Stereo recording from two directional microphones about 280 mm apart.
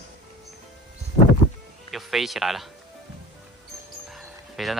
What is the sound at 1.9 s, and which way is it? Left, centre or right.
Speech, centre.